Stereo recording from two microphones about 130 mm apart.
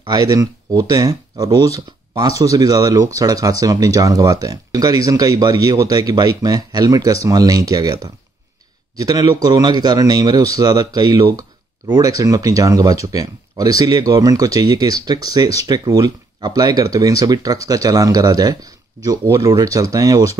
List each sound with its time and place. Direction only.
0.0 s speech: 30° right (ahead or behind)